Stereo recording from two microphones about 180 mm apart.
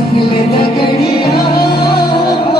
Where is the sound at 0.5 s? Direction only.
60° left (ahead or behind).